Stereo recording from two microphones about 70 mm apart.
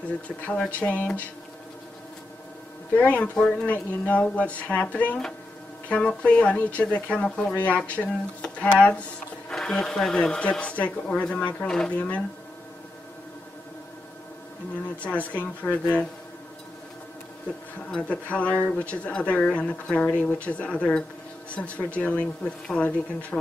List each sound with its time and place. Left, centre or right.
0.5 s speech: centre
2.9 s speech: left
15.0 s speech: left
17.9 s speech: centre